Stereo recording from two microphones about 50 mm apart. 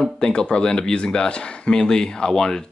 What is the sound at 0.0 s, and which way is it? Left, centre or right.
Speech, centre.